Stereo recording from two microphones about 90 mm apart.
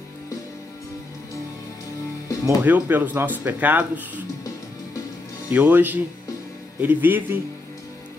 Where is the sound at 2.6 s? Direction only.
20° right (ahead or behind).